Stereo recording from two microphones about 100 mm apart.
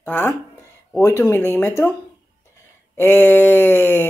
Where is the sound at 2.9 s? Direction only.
20° left (ahead or behind).